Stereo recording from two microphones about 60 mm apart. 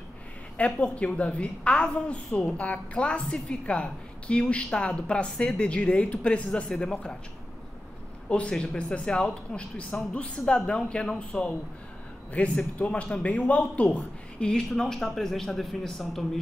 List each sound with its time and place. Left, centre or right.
0.6 s a woman's voice: centre
8.3 s a woman's voice: centre
14.7 s a man's voice: centre